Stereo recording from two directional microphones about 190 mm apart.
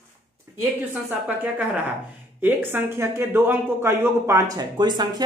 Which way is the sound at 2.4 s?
10° right (ahead or behind).